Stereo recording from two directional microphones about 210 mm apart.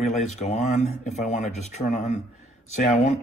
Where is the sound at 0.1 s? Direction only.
35° left (ahead or behind).